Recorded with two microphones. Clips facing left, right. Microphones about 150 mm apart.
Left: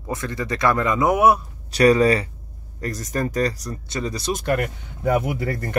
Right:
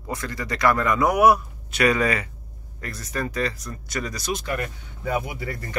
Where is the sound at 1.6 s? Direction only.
35° left (ahead or behind).